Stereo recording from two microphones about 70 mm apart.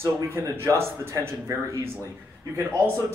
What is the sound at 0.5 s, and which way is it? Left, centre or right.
Speech, right.